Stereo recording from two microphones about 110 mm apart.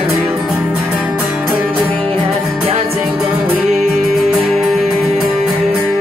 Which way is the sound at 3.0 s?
5° right (ahead or behind).